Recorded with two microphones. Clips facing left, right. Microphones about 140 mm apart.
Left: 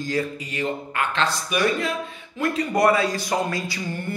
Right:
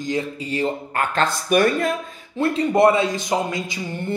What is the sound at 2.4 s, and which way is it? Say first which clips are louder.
A man's voice: right 4 dB; 30° right (ahead or behind).